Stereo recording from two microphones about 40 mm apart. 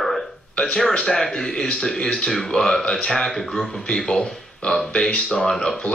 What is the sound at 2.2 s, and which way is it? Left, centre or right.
Speech, centre.